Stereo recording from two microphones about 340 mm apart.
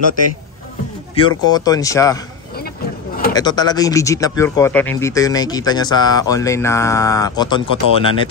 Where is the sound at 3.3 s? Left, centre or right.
Centre.